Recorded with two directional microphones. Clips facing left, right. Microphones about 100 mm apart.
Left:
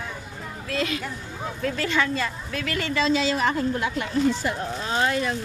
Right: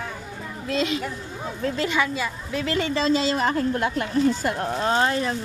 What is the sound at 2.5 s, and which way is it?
Speech, 25° right (ahead or behind).